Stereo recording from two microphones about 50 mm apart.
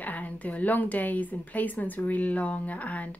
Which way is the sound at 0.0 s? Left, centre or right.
Left.